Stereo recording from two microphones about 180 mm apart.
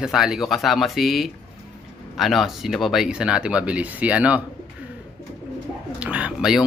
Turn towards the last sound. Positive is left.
turn(degrees=-5)  # may be behind; listen again after turning